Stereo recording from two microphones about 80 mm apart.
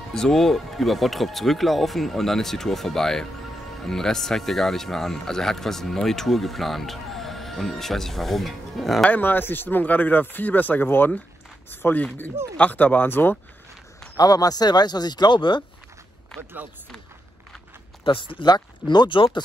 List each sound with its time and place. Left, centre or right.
0.1 s speech: centre
9.0 s speech: left
14.1 s speech: left
18.0 s speech: left